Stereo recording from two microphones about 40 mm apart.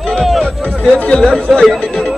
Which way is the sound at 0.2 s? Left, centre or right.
Centre.